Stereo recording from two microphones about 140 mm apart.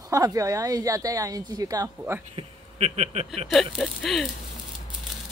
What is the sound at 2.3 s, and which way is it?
Speech, 50° right (ahead or behind).